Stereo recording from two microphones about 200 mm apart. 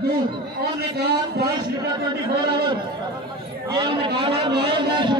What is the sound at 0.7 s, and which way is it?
Speech, 55° right (ahead or behind).